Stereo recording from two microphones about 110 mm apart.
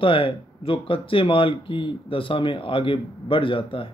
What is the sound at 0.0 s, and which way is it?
A man's voice, 55° left (ahead or behind).